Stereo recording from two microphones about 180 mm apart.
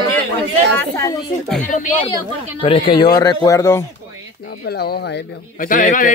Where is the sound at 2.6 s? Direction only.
30° left (ahead or behind).